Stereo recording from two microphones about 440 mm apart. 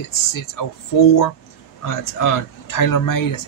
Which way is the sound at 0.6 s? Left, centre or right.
Left.